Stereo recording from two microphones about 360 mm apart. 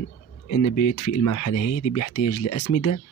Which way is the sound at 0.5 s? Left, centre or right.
Left.